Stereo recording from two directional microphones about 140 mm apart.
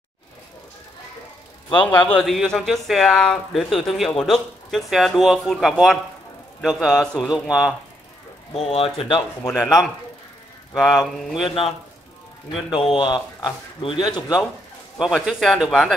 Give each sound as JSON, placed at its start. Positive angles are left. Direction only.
{"t": 1.9, "sound": "speech", "side_deg": 10}
{"t": 8.5, "sound": "speech", "side_deg": 45}
{"t": 9.5, "sound": "speech", "side_deg": 0}
{"t": 11.4, "sound": "speech", "side_deg": 40}
{"t": 12.7, "sound": "speech", "side_deg": 35}
{"t": 15.0, "sound": "speech", "side_deg": -5}